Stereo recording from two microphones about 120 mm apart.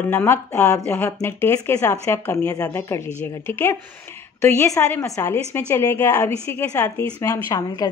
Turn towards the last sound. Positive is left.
turn(degrees=25)  # may be behind; listen again after turning